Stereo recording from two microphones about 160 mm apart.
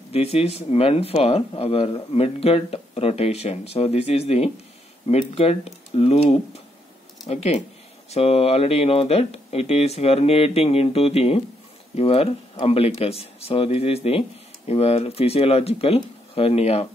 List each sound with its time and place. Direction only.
0.1 s speech: 40° left (ahead or behind)
7.2 s speech: 40° left (ahead or behind)